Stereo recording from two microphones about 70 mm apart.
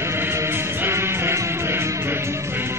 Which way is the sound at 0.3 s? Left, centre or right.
Right.